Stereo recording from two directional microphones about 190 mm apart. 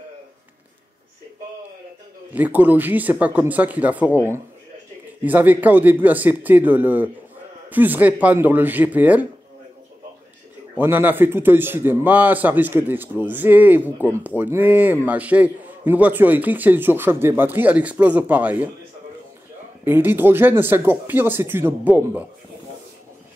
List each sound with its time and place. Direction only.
2.3 s a man's voice: 10° right (ahead or behind)
5.2 s a man's voice: 10° right (ahead or behind)
10.8 s a man's voice: 10° right (ahead or behind)
19.8 s a man's voice: 10° right (ahead or behind)